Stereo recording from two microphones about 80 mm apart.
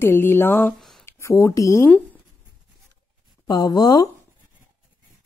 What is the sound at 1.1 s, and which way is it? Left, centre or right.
Speech, left.